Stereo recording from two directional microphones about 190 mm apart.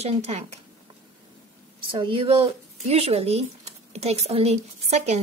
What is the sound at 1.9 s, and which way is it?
Speech, 25° right (ahead or behind).